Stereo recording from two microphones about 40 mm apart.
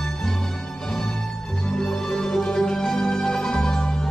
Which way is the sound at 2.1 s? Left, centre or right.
Centre.